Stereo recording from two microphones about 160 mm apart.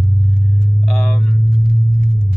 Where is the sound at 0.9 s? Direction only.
5° left (ahead or behind).